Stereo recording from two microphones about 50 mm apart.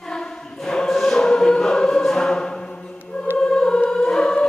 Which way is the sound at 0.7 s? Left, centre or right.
Centre.